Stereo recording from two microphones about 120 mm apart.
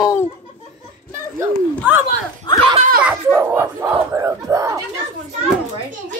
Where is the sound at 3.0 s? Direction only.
15° right (ahead or behind).